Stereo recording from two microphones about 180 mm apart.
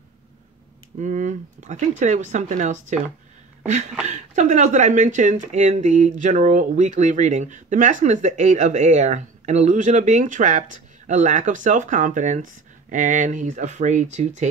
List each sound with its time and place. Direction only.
0.9 s speech: 40° right (ahead or behind)
4.1 s speech: 40° right (ahead or behind)